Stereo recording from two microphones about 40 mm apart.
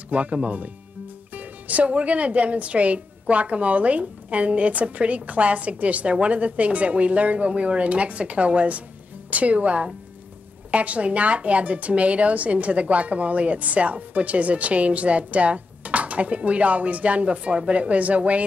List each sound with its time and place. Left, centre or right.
0.1 s a woman's voice: right